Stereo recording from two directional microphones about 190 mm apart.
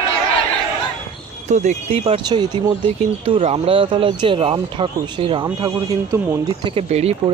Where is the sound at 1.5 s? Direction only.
40° right (ahead or behind).